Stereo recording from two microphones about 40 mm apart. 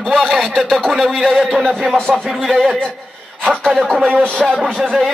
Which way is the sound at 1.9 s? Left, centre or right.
Centre.